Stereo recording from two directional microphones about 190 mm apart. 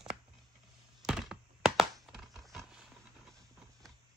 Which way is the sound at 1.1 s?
Centre (ahead or behind).